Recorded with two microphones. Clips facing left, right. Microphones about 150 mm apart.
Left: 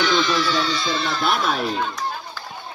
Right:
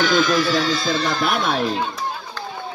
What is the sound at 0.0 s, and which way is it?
Speech, 45° right (ahead or behind).